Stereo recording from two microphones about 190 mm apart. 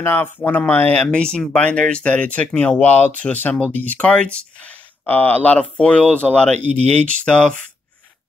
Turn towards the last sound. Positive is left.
turn(degrees=5)  # may be behind; listen again after turning